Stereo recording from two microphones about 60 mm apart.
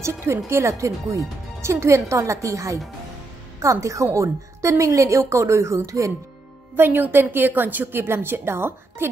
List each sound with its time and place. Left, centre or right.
0.0 s a woman's voice: right
6.8 s a woman's voice: right